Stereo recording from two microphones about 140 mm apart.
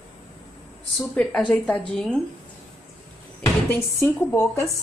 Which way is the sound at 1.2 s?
5° left (ahead or behind).